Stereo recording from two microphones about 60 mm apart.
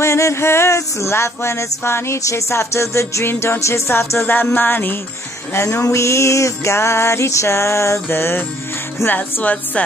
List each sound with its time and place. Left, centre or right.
0.0 s music: left
3.9 s music: left
5.5 s music: left
9.0 s speech: left